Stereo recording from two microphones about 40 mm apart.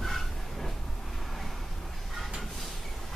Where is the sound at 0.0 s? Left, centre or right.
Centre.